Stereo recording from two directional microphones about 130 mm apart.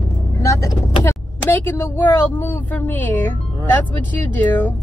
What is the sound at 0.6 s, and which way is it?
Speech, 25° left (ahead or behind).